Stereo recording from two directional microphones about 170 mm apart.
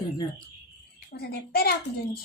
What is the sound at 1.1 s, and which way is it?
A child's voice, 70° left (ahead or behind).